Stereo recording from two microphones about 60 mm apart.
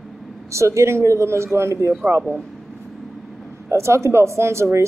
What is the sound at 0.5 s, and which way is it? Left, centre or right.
A woman's voice, right.